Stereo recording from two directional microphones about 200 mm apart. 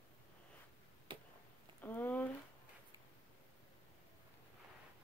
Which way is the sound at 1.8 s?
10° left (ahead or behind).